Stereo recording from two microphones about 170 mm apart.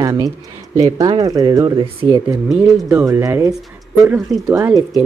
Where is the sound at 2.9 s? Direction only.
15° right (ahead or behind).